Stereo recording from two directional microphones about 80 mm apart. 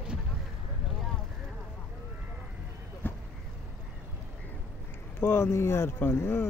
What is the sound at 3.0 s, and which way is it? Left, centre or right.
Boat, left.